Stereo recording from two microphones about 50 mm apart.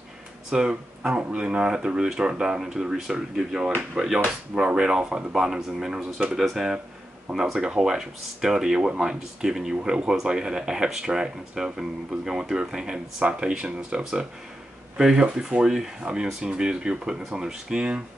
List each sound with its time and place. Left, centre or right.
0.5 s speech: centre
4.2 s speech: right
9.8 s speech: right